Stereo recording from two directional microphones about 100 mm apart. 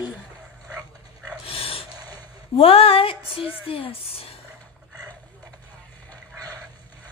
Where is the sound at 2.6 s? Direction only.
75° left (ahead or behind).